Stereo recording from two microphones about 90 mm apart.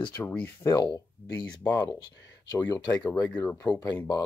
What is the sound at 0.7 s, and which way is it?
Speech, 35° left (ahead or behind).